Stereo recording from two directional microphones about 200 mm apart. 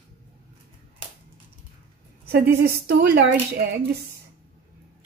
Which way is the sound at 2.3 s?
55° right (ahead or behind).